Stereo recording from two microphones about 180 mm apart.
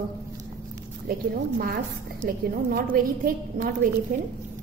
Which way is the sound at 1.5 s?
55° right (ahead or behind).